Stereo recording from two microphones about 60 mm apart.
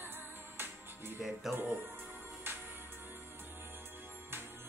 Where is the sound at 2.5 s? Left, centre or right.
Right.